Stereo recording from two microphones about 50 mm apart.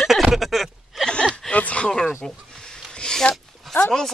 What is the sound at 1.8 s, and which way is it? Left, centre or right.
Speech, centre.